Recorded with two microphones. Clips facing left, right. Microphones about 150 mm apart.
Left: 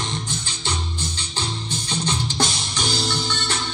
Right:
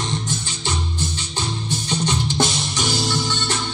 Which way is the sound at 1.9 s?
15° right (ahead or behind).